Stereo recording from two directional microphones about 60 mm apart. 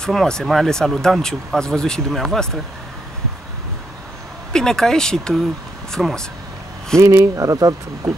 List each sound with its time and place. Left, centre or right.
0.0 s speech: centre
4.5 s speech: centre
7.0 s speech: right